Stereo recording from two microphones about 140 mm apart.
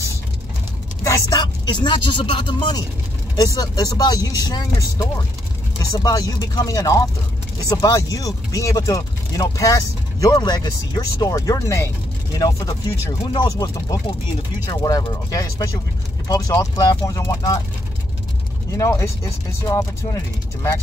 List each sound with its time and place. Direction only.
1.0 s speech: 25° left (ahead or behind)
18.7 s speech: 20° left (ahead or behind)